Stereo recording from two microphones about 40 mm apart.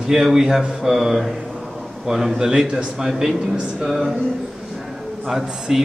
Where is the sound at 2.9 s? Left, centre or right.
Centre.